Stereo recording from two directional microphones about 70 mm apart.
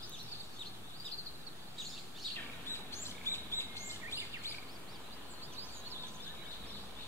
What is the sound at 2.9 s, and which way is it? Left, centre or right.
Chirp, left.